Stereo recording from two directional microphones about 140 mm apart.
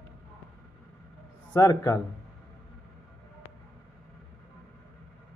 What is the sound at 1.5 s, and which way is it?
Speech, 25° left (ahead or behind).